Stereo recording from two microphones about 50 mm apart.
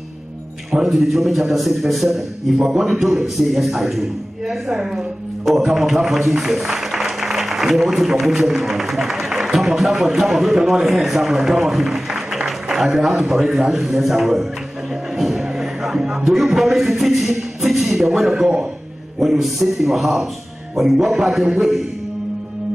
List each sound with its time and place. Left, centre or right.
0.8 s a man's voice: centre
18.3 s speech: centre
19.1 s speech: centre